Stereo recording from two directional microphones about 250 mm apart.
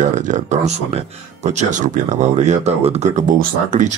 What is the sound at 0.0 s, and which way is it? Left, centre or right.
Speech, right.